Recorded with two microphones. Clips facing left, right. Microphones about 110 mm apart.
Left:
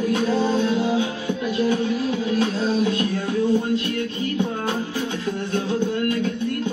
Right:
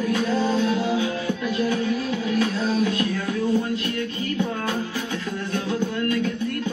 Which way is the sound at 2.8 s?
25° left (ahead or behind).